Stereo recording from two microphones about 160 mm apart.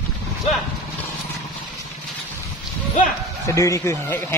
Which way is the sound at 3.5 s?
20° left (ahead or behind).